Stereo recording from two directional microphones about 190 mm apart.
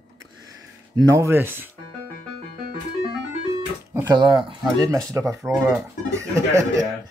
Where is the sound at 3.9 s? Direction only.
20° right (ahead or behind).